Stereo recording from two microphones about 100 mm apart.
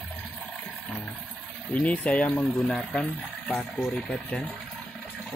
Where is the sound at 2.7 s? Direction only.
Centre (ahead or behind).